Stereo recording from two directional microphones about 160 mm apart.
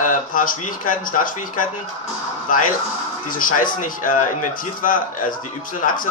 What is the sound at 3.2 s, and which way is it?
Speech, 60° left (ahead or behind).